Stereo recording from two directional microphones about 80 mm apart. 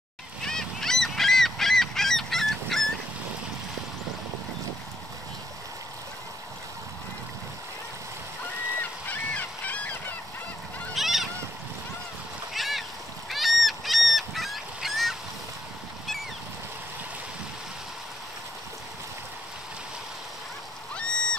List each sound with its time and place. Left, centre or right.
0.5 s goose: centre
9.1 s goose: centre
11.0 s a sound: centre
12.5 s a sound: centre
13.3 s goose: centre
20.9 s goose: centre